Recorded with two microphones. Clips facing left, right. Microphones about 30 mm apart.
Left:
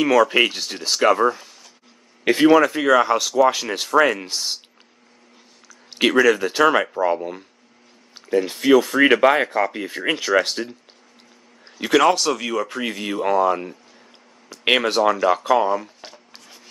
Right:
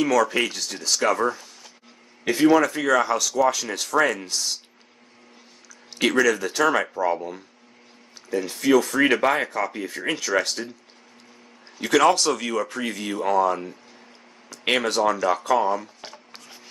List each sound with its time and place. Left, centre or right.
0.0 s speech: left
2.2 s speech: left
2.5 s speech: left
5.9 s speech: left
12.0 s speech: centre
12.6 s speech: centre
16.3 s chopping: centre